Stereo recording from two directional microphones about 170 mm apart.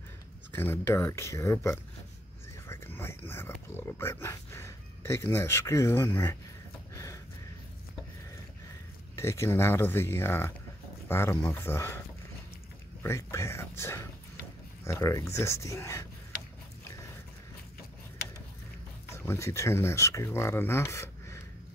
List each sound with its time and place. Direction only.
0.5 s speech: 10° left (ahead or behind)
2.7 s a sound: 15° left (ahead or behind)
3.3 s speech: 15° left (ahead or behind)
9.1 s speech: 15° left (ahead or behind)
13.0 s speech: 15° left (ahead or behind)
19.1 s speech: 15° left (ahead or behind)